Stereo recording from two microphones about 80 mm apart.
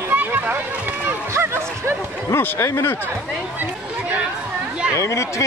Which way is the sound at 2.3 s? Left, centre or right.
Left.